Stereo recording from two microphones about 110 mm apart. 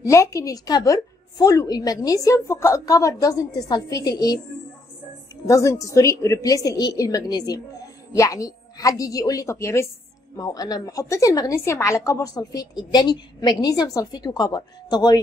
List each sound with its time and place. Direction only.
0.0 s a woman's voice: 30° left (ahead or behind)
5.5 s a woman's voice: 30° left (ahead or behind)